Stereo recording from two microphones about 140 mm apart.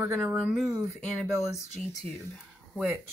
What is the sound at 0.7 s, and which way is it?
Speech, 20° right (ahead or behind).